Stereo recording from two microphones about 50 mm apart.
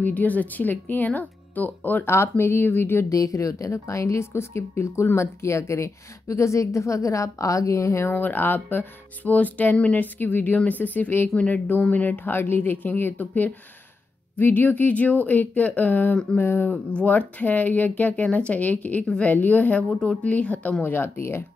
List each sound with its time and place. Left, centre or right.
0.0 s speech: left
2.3 s speech: left
3.1 s a woman's voice: left
8.1 s speech: left
11.2 s speech: left
16.3 s speech: left
16.9 s speech: left
20.8 s speech: left